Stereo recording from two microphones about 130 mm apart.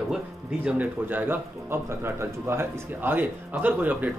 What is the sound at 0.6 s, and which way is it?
Speech, 10° right (ahead or behind).